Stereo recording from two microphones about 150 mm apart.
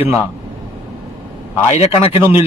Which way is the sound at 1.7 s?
45° left (ahead or behind).